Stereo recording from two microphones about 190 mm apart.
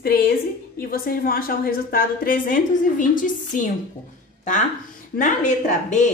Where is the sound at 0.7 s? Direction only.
50° left (ahead or behind).